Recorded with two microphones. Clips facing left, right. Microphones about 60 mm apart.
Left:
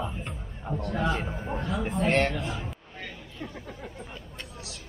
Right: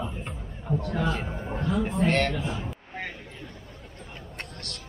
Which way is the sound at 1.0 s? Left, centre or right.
Centre.